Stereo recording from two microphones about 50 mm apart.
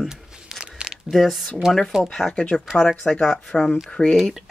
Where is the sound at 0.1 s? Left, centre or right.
Centre.